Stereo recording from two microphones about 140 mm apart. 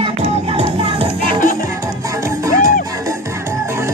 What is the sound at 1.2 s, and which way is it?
Music, 70° left (ahead or behind).